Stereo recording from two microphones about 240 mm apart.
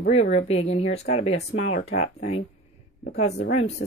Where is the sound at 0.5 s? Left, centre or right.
Left.